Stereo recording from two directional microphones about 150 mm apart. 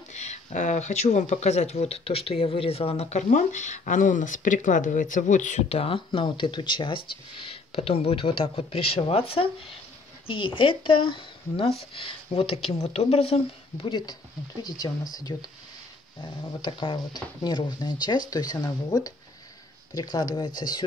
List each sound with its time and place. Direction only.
0.1 s speech: 50° left (ahead or behind)
13.8 s speech: 30° left (ahead or behind)